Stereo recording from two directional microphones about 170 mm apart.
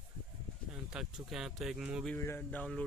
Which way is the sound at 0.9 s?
5° right (ahead or behind).